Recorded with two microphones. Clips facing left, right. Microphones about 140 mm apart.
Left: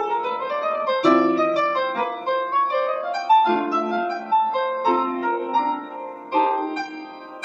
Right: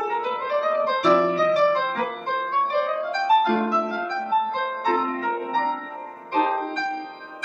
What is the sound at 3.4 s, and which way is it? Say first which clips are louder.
Music: left 2 dB; 10° left (ahead or behind).